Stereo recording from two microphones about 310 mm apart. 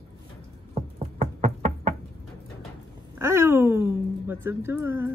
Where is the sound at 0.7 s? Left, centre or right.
Right.